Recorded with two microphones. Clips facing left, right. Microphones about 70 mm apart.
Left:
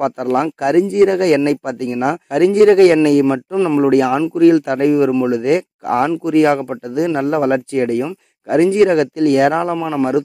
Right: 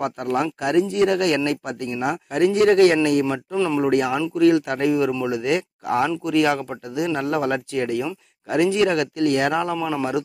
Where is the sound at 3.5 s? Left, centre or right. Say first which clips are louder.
Left 6 dB; left.